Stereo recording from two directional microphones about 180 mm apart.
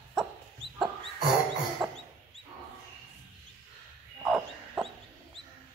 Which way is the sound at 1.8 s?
Centre (ahead or behind).